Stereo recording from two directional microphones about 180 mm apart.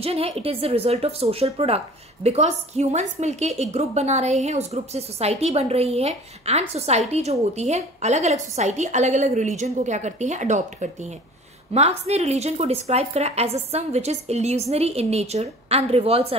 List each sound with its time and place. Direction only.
0.0 s a woman's voice: 35° right (ahead or behind)